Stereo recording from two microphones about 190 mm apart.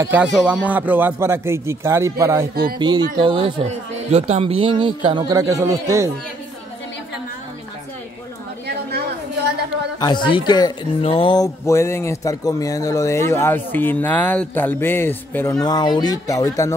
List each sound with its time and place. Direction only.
0.0 s speech: 10° right (ahead or behind)
8.6 s a sound: 60° right (ahead or behind)
9.9 s speech: 25° left (ahead or behind)
15.6 s speech: 20° left (ahead or behind)